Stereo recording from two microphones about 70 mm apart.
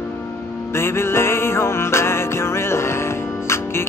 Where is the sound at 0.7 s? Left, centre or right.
Left.